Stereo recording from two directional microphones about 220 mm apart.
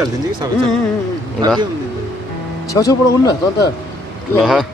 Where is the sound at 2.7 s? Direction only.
15° left (ahead or behind).